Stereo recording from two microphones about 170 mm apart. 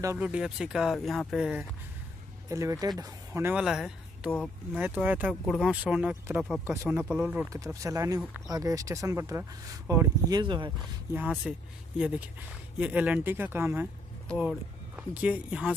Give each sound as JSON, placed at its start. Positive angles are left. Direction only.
{"t": 0.0, "sound": "speech", "side_deg": -10}
{"t": 2.5, "sound": "speech", "side_deg": -20}
{"t": 3.5, "sound": "speech", "side_deg": -5}
{"t": 5.3, "sound": "speech", "side_deg": 10}
{"t": 5.6, "sound": "speech", "side_deg": -5}
{"t": 7.4, "sound": "speech", "side_deg": -20}
{"t": 10.4, "sound": "speech", "side_deg": -30}
{"t": 11.4, "sound": "speech", "side_deg": 0}
{"t": 12.7, "sound": "speech", "side_deg": -5}
{"t": 14.2, "sound": "speech", "side_deg": 5}
{"t": 15.0, "sound": "speech", "side_deg": -5}